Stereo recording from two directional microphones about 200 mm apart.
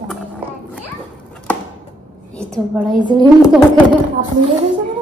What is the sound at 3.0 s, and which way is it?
Speech, 20° right (ahead or behind).